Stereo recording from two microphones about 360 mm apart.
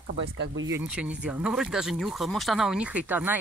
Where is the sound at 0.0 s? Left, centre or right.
Right.